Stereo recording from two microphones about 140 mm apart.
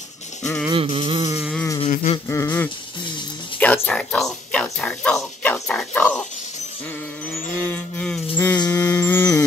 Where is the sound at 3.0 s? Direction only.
35° left (ahead or behind).